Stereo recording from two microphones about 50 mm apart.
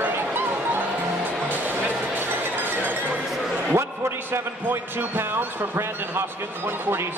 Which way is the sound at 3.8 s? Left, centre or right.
Right.